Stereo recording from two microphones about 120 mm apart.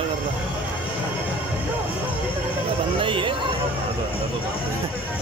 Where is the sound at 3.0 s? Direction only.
45° right (ahead or behind).